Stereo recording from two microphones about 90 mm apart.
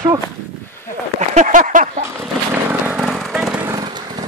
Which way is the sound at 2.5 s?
20° right (ahead or behind).